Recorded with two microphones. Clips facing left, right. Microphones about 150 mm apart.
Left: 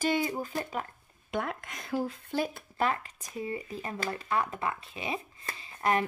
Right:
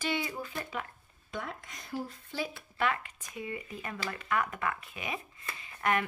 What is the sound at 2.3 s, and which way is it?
Speech, 50° left (ahead or behind).